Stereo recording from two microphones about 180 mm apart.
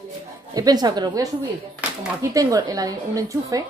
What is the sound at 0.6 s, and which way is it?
Speech, 20° right (ahead or behind).